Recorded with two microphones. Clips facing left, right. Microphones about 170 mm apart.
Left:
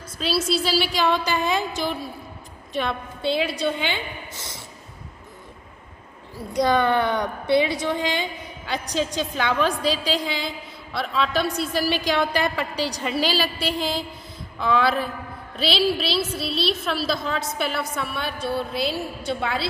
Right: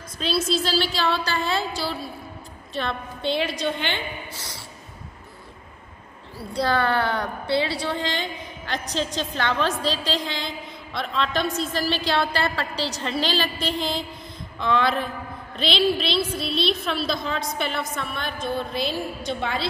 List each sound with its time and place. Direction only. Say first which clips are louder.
0.2 s a woman's voice: left 1 dB; 10° left (ahead or behind)
4.4 s a sound: left 1 dB; 20° left (ahead or behind)
6.3 s a woman's voice: left 3 dB; 15° left (ahead or behind)